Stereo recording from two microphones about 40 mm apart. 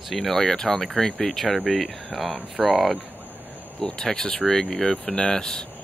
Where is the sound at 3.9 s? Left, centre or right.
Centre.